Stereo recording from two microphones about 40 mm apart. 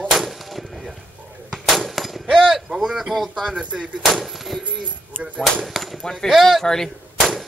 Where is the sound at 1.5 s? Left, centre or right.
Centre.